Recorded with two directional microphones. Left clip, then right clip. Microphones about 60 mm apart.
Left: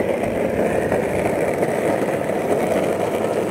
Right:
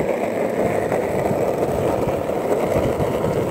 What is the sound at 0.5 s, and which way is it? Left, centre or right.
Vehicle, left.